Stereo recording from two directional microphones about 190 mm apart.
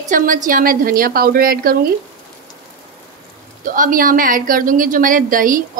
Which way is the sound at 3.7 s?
45° right (ahead or behind).